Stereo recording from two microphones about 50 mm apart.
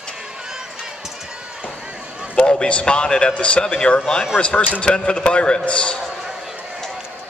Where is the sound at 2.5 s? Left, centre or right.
Left.